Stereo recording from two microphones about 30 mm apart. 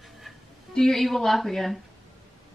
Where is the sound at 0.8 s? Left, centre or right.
Centre.